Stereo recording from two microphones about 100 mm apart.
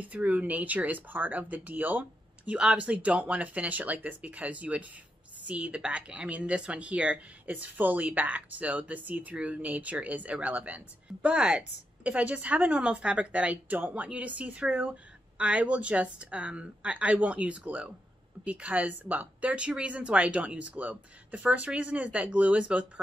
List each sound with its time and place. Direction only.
0.0 s speech: 15° right (ahead or behind)